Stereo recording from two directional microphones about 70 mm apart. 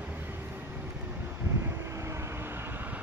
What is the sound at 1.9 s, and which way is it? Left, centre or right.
Vehicle, right.